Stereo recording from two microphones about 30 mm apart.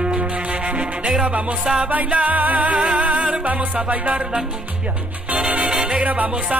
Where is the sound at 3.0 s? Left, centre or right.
Right.